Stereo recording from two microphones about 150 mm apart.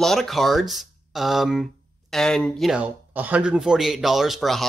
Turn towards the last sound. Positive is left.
turn(degrees=0)  # may be behind; listen again after turning